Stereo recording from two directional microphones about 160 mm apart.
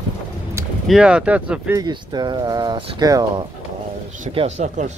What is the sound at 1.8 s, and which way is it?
Speech, 25° right (ahead or behind).